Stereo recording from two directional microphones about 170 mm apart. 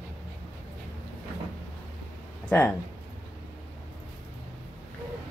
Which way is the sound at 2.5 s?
10° left (ahead or behind).